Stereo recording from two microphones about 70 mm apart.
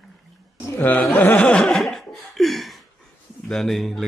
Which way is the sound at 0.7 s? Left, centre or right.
Left.